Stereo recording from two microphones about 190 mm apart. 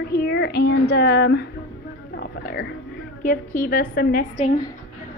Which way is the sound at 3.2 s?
45° left (ahead or behind).